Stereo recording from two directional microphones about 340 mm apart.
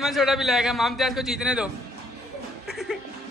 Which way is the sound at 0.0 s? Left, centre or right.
Centre.